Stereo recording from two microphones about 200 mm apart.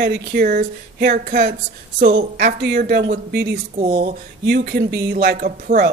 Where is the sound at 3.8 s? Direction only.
40° right (ahead or behind).